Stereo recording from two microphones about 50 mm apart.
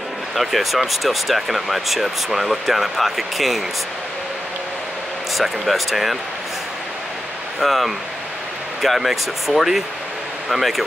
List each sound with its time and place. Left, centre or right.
0.4 s speech: centre
5.4 s speech: centre
7.6 s speech: centre